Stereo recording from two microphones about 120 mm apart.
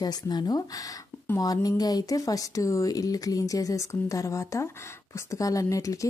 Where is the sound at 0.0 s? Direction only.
35° left (ahead or behind).